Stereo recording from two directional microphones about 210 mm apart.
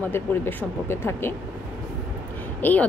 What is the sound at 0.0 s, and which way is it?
A woman's voice, 10° left (ahead or behind).